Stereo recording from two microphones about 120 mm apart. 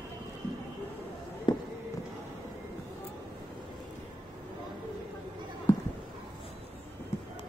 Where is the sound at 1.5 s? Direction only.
40° left (ahead or behind).